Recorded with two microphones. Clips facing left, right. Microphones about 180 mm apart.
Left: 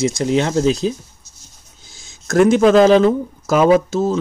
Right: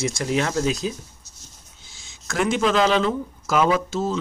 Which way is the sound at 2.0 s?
40° left (ahead or behind).